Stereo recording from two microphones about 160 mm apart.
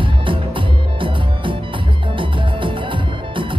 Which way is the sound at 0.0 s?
30° right (ahead or behind).